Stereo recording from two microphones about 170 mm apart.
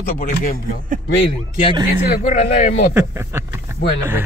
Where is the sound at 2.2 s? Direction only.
40° left (ahead or behind).